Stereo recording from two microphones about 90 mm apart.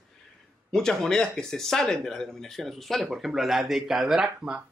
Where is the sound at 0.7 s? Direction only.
5° left (ahead or behind).